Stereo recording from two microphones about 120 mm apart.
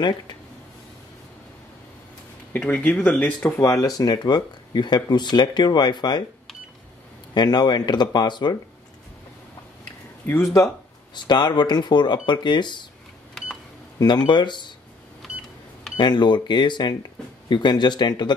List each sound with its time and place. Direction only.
2.5 s speech: 10° left (ahead or behind)
3.5 s speech: 25° left (ahead or behind)
7.3 s speech: 35° left (ahead or behind)
11.1 s speech: 40° left (ahead or behind)
13.9 s speech: 40° left (ahead or behind)
15.2 s cash register: 5° left (ahead or behind)
16.0 s speech: 40° left (ahead or behind)